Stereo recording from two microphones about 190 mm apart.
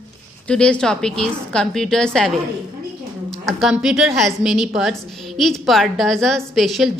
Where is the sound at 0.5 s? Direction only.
5° left (ahead or behind).